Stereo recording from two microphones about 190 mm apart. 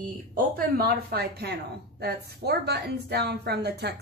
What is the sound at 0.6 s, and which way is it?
A woman's voice, 55° right (ahead or behind).